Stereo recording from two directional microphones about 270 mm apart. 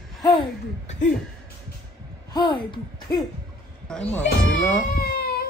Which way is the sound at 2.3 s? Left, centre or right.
Centre.